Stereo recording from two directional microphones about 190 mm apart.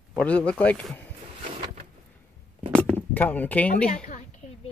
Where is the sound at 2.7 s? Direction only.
5° left (ahead or behind).